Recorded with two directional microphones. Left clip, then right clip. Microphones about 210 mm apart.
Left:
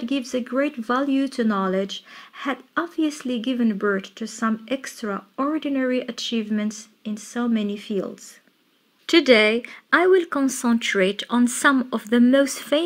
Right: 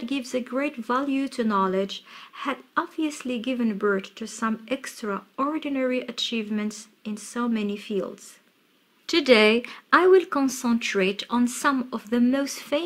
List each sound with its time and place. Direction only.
0.0 s speech: 10° left (ahead or behind)
10.5 s speech: 20° left (ahead or behind)